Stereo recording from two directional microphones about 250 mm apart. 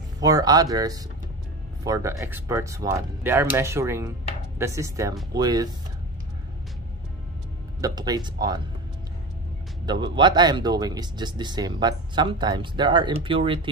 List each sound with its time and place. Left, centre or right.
0.2 s speech: centre
7.8 s speech: centre
9.8 s speech: centre